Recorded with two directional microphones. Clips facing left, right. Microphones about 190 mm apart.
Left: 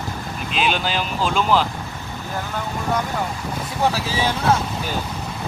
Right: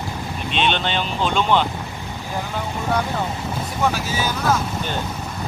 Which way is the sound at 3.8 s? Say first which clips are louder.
Left 1 dB; 30° left (ahead or behind).